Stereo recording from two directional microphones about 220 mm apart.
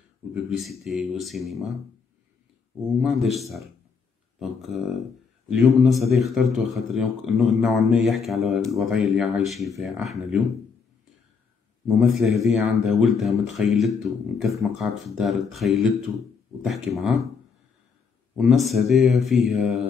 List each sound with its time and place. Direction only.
0.3 s speech: centre (ahead or behind)
3.0 s speech: centre (ahead or behind)
12.4 s speech: centre (ahead or behind)
18.4 s speech: centre (ahead or behind)